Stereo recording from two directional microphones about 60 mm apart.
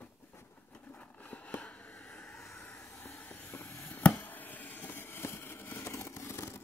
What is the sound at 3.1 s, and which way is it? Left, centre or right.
Vehicle, left.